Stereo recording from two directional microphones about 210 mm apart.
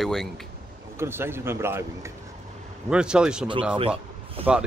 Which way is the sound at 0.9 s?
10° right (ahead or behind).